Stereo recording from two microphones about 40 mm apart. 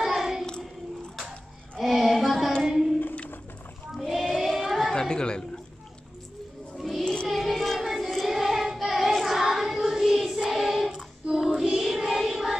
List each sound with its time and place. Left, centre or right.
0.0 s child singing: centre
1.8 s music: centre
2.6 s child singing: centre
4.0 s a sound: centre
4.9 s speech: left
6.8 s a sound: centre
7.2 s child singing: centre
7.8 s child singing: centre
10.5 s choir: centre
11.5 s child singing: centre